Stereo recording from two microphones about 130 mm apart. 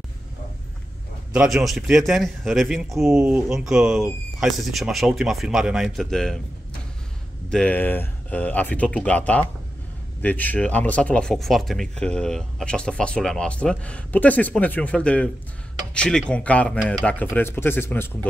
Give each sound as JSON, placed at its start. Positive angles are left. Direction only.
{"t": 1.3, "sound": "a man's voice", "side_deg": -5}
{"t": 7.4, "sound": "speech", "side_deg": 10}